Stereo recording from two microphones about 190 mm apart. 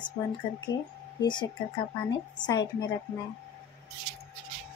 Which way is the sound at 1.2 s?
25° left (ahead or behind).